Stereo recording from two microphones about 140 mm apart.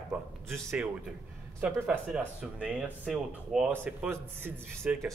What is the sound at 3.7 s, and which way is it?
Speech, 15° right (ahead or behind).